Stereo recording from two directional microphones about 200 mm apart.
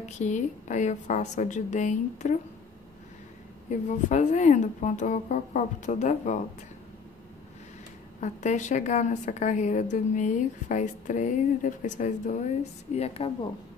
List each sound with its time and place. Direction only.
0.2 s a woman's voice: 35° left (ahead or behind)
3.8 s a woman's voice: 40° left (ahead or behind)
8.2 s a woman's voice: 35° left (ahead or behind)